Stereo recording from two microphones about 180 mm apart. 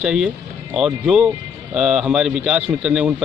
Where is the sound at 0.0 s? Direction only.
5° right (ahead or behind).